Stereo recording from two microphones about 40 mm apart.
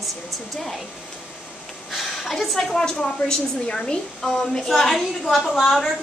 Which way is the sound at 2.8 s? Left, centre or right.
Centre.